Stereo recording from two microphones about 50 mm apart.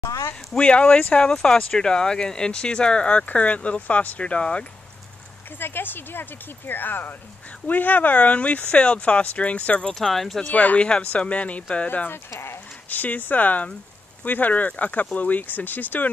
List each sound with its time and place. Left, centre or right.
0.0 s a sound: left
0.6 s speech: left
5.6 s speech: left
9.9 s speech: centre
10.5 s speech: left
12.3 s speech: left
12.9 s speech: left